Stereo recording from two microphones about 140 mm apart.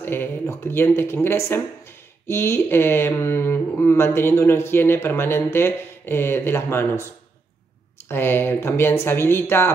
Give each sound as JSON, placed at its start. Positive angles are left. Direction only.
{"t": 0.0, "sound": "speech", "side_deg": 15}
{"t": 8.1, "sound": "speech", "side_deg": 15}